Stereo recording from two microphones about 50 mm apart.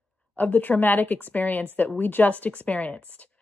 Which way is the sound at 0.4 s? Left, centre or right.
Left.